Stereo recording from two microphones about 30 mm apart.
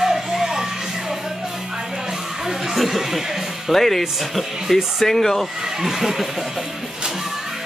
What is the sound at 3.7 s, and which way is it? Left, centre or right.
Speech, centre.